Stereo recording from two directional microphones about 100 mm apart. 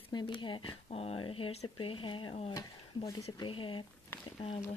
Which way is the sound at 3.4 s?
55° left (ahead or behind).